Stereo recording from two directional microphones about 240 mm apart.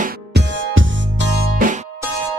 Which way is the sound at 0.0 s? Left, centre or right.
Right.